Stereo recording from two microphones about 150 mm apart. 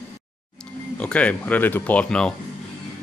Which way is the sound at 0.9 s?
10° left (ahead or behind).